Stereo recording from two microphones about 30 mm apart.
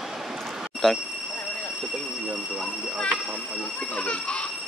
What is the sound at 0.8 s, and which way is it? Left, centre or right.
Speech, centre.